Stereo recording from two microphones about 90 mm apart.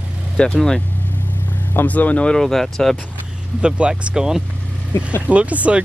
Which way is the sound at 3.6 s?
10° right (ahead or behind).